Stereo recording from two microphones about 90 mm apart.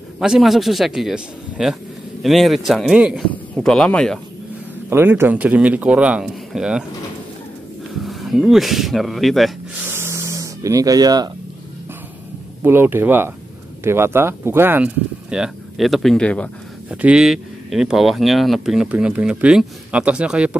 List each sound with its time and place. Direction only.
0.2 s speech: 5° right (ahead or behind)
4.8 s speech: 25° right (ahead or behind); by 6.8 s 5° right (ahead or behind)
7.9 s speech: centre (ahead or behind)
9.8 s spray: 30° right (ahead or behind); by 11.2 s 45° right (ahead or behind)
12.6 s speech: 25° right (ahead or behind)
15.2 s speech: 10° right (ahead or behind)
16.2 s speech: 15° left (ahead or behind)
16.9 s speech: 10° right (ahead or behind)
18.9 s speech: 15° right (ahead or behind)